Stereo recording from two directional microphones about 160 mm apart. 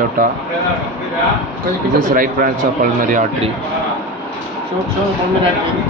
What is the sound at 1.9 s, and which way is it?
Speech, 65° right (ahead or behind).